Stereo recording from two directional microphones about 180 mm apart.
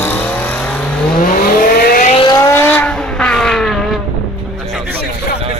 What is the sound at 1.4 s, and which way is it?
Vehicle, 50° left (ahead or behind).